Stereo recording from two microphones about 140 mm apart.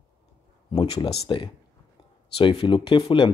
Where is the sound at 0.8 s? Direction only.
45° left (ahead or behind).